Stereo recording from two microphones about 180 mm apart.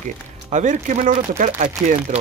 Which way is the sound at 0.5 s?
40° right (ahead or behind).